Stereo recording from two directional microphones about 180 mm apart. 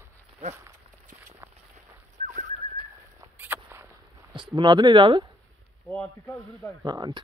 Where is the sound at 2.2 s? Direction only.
40° right (ahead or behind).